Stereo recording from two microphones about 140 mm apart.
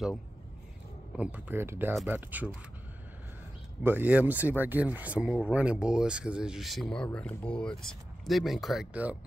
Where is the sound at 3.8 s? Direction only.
15° right (ahead or behind).